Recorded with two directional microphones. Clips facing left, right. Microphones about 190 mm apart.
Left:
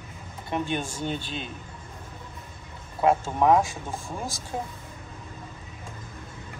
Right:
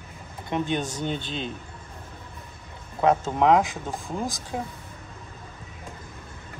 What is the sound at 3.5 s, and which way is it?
Speech, 15° right (ahead or behind).